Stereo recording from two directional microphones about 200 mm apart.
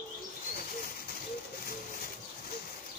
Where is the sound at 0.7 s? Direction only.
45° left (ahead or behind).